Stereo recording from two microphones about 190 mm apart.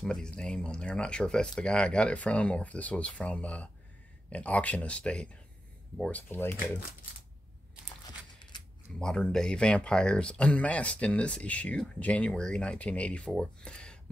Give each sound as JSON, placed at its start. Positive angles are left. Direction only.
{"t": 0.0, "sound": "speech", "side_deg": 5}
{"t": 8.4, "sound": "a sound", "side_deg": 25}
{"t": 9.0, "sound": "speech", "side_deg": 5}